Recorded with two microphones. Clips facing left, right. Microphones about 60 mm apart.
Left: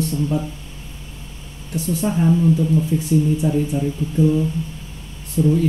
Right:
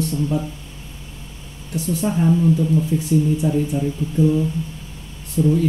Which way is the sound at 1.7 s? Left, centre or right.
Left.